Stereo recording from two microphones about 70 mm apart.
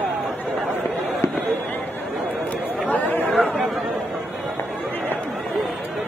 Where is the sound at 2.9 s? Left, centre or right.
Left.